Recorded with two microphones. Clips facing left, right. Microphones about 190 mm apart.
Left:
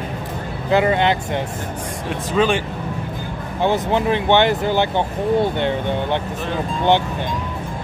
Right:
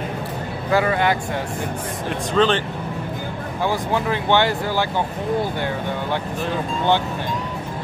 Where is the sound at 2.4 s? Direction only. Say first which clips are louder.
Even; 10° left (ahead or behind).